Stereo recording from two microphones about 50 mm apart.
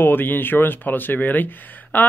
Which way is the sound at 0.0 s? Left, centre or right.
Left.